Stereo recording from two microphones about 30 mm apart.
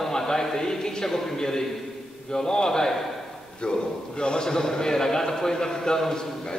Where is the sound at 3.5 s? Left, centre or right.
Left; by 6.3 s centre.